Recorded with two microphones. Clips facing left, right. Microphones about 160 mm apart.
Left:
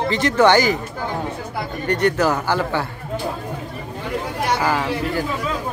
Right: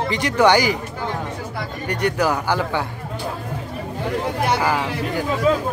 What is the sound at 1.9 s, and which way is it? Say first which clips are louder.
Speech: left 2 dB; 10° right (ahead or behind).